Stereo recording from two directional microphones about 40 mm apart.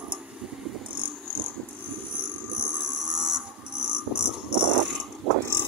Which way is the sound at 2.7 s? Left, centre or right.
Right.